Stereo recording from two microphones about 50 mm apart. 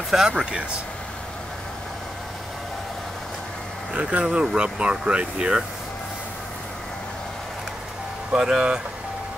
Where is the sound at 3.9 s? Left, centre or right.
Right.